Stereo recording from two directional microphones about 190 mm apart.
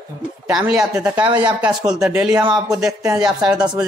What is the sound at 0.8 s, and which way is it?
A man's voice, 5° right (ahead or behind).